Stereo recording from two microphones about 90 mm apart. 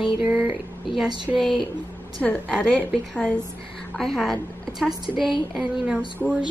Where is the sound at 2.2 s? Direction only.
15° left (ahead or behind).